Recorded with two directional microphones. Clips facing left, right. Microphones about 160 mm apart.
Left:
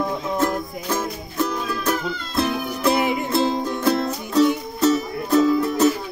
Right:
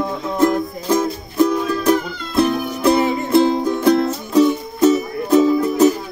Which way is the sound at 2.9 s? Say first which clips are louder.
Right 4 dB; 15° left (ahead or behind).